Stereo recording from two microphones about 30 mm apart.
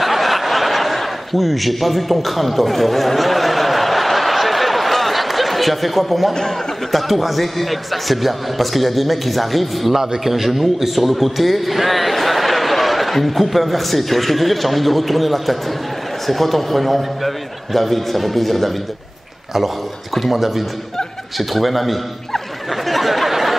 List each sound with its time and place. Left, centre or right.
0.0 s chuckle: centre
6.9 s a man's voice: centre
20.2 s a man's voice: centre
22.8 s a sound: centre